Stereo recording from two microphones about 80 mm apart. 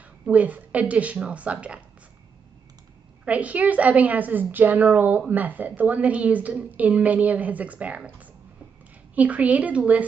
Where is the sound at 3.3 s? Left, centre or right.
Centre.